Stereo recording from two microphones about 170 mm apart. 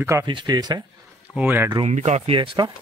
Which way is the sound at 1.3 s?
10° right (ahead or behind).